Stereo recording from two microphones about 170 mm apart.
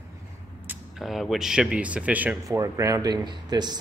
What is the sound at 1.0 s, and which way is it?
Speech, centre (ahead or behind).